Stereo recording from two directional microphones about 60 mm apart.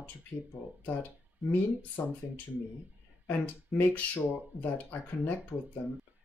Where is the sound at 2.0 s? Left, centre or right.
Left.